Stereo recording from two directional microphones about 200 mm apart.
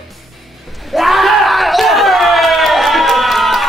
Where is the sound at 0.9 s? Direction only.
Centre (ahead or behind).